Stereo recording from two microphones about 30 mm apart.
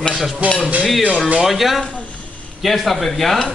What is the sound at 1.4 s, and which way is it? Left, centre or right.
Speech, centre.